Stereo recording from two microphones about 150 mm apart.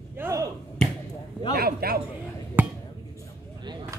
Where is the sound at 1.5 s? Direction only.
90° right.